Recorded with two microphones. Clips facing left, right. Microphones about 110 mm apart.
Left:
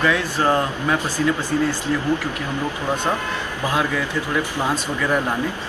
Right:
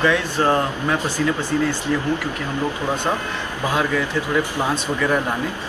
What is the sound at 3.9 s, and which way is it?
Speech, 15° left (ahead or behind).